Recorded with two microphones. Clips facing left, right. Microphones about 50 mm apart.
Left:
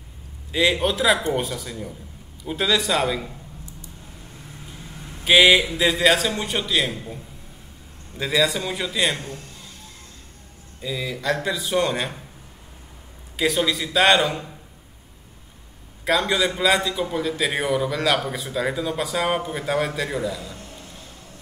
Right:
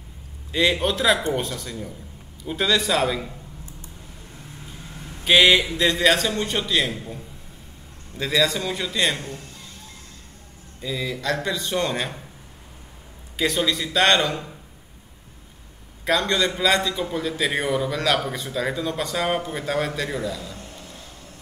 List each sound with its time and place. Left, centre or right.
0.5 s a man's voice: centre
5.2 s a man's voice: centre
8.2 s a man's voice: centre
10.8 s a man's voice: centre
13.4 s a man's voice: centre
16.1 s a man's voice: centre